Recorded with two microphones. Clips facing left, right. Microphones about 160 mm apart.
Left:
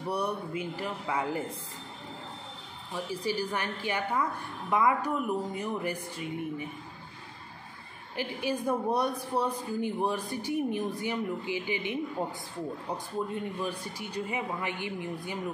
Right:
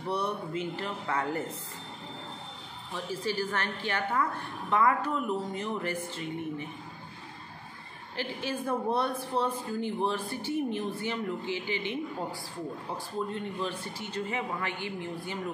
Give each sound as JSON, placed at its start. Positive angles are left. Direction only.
{"t": 0.0, "sound": "a woman's voice", "side_deg": 10}
{"t": 2.9, "sound": "a woman's voice", "side_deg": 15}
{"t": 8.2, "sound": "a woman's voice", "side_deg": 15}